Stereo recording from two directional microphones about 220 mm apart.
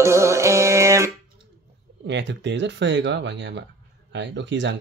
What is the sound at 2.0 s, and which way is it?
Speech, 55° right (ahead or behind).